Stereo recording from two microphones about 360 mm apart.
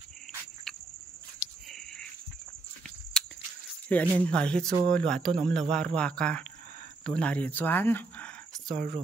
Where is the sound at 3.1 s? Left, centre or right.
Centre.